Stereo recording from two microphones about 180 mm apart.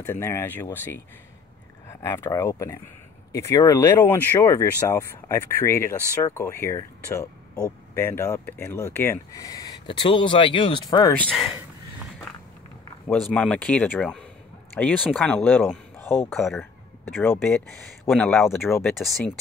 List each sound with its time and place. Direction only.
0.0 s speech: 15° left (ahead or behind)
1.9 s speech: 15° left (ahead or behind)
13.1 s speech: 5° left (ahead or behind)